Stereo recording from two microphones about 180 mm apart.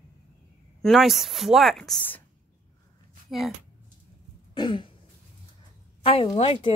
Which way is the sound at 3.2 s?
Centre (ahead or behind).